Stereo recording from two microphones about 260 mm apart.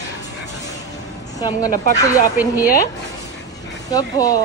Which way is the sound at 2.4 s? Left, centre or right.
Centre.